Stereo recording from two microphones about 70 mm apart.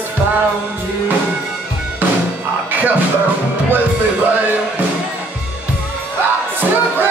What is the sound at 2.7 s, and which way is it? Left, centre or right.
Music, right.